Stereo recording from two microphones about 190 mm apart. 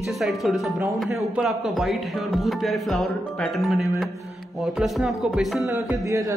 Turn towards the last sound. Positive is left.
turn(degrees=-15)  # may be behind; listen again after turning